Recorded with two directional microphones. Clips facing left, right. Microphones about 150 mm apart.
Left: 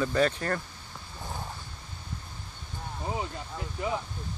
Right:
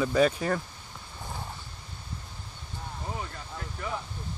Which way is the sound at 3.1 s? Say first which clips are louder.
Left 5 dB; 15° left (ahead or behind).